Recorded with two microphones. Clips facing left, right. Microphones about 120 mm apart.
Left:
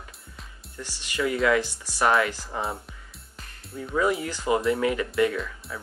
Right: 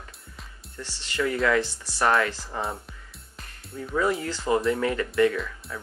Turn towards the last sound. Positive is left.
turn(degrees=5)  # may be behind; listen again after turning